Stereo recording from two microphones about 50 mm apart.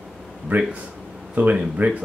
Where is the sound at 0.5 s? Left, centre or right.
Right.